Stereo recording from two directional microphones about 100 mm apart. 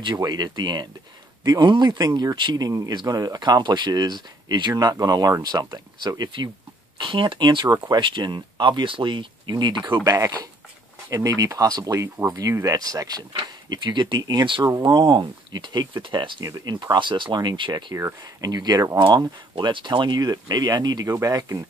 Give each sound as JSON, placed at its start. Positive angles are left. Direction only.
{"t": 0.0, "sound": "speech", "side_deg": -45}
{"t": 7.0, "sound": "speech", "side_deg": -55}
{"t": 10.1, "sound": "speech", "side_deg": -35}
{"t": 16.4, "sound": "speech", "side_deg": -40}
{"t": 17.9, "sound": "speech", "side_deg": -35}